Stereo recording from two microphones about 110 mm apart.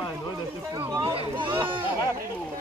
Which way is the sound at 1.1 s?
50° right (ahead or behind).